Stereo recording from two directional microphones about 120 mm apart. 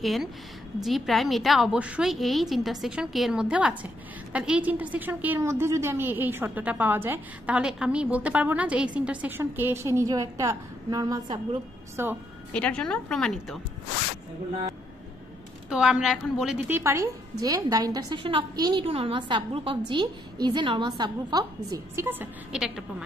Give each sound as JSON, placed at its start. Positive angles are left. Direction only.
{"t": 0.0, "sound": "a woman's voice", "side_deg": 0}
{"t": 12.0, "sound": "a woman's voice", "side_deg": -20}
{"t": 12.5, "sound": "a woman's voice", "side_deg": 10}
{"t": 15.7, "sound": "a woman's voice", "side_deg": -5}
{"t": 16.6, "sound": "a woman's voice", "side_deg": -20}
{"t": 18.9, "sound": "a woman's voice", "side_deg": -50}
{"t": 22.0, "sound": "a woman's voice", "side_deg": -10}